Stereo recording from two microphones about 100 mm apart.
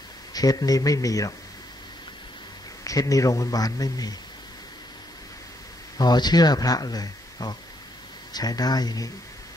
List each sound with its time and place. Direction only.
0.3 s speech: 40° left (ahead or behind)
2.8 s speech: 35° left (ahead or behind)
5.9 s speech: 45° left (ahead or behind)